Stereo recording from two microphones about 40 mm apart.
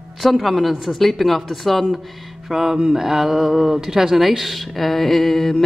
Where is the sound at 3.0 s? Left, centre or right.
Centre.